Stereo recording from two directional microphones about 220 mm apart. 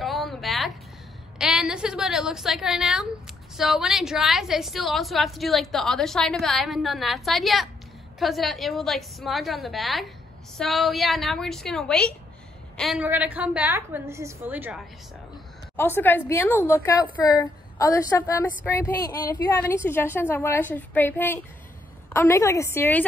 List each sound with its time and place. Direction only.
0.0 s a sound: centre (ahead or behind)
1.4 s a woman's voice: 5° right (ahead or behind)
15.7 s a woman's voice: 10° left (ahead or behind)